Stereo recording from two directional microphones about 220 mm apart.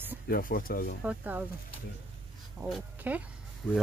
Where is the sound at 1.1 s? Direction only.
10° right (ahead or behind).